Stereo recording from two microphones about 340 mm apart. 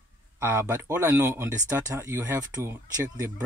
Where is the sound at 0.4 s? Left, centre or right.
Centre.